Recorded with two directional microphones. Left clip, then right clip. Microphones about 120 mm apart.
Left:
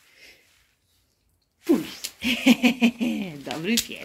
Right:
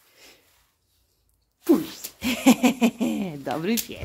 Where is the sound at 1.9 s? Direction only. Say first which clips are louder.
Left 2 dB; 40° right (ahead or behind).